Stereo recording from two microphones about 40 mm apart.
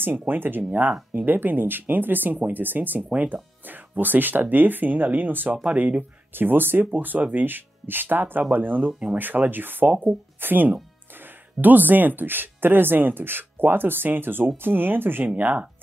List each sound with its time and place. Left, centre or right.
0.3 s speech: right
5.8 s speech: right
6.3 s speech: right
15.3 s speech: right